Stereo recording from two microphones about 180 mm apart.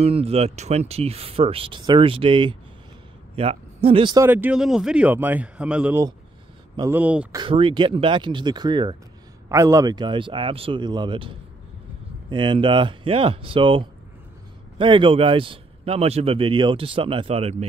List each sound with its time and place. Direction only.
0.0 s speech: 35° right (ahead or behind)
4.2 s speech: 10° right (ahead or behind)
7.3 s speech: 30° right (ahead or behind)